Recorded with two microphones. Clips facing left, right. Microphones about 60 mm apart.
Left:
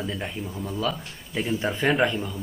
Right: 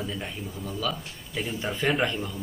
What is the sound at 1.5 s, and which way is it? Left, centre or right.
Speech, centre.